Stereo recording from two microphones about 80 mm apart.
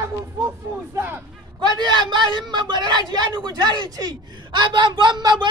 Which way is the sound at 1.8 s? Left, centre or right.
Right.